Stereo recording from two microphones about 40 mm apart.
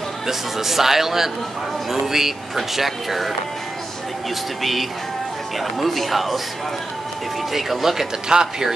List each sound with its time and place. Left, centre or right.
0.3 s a man's voice: centre
5.6 s speech: centre
7.5 s a man's voice: centre
8.3 s a man's voice: centre